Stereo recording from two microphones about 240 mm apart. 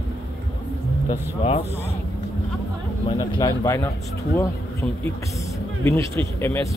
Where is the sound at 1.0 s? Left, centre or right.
Left.